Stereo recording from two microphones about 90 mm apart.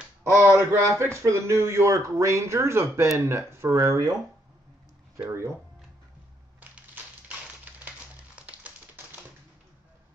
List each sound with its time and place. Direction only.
0.2 s a man's voice: 30° right (ahead or behind)
7.2 s typewriter: 15° right (ahead or behind)
8.4 s a sound: 15° right (ahead or behind)